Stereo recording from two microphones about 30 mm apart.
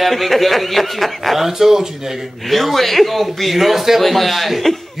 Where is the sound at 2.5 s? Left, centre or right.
Centre.